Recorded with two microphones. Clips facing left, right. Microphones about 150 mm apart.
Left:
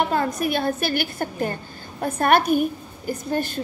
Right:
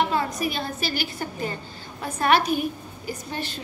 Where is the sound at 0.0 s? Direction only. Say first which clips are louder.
Left 2 dB; 50° left (ahead or behind).